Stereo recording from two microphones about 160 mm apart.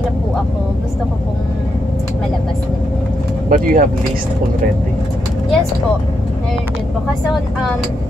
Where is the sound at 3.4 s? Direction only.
60° right (ahead or behind).